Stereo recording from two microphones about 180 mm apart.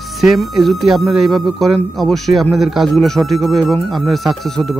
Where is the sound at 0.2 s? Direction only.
Centre (ahead or behind).